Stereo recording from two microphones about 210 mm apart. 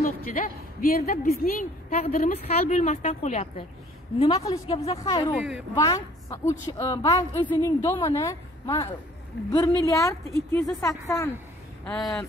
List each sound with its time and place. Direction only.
0.0 s a woman's voice: 40° left (ahead or behind); by 5.3 s 20° left (ahead or behind)
5.3 s speech: centre (ahead or behind)
5.8 s a woman's voice: 15° left (ahead or behind)